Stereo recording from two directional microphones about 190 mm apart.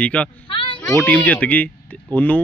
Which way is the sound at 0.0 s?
5° left (ahead or behind).